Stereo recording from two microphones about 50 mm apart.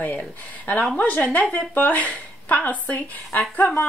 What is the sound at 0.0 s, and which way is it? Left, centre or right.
A woman's voice, left.